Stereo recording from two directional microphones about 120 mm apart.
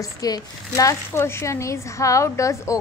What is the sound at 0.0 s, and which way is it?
A woman's voice, 30° left (ahead or behind).